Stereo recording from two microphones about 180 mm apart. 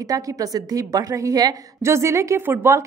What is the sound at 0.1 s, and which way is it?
A woman's voice, 20° right (ahead or behind).